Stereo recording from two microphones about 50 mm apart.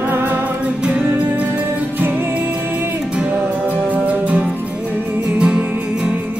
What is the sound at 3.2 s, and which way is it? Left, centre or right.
Music, right.